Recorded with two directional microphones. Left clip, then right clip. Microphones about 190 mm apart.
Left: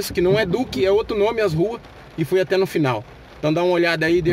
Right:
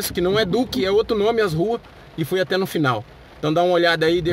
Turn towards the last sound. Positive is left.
turn(degrees=-20)  # may be behind; listen again after turning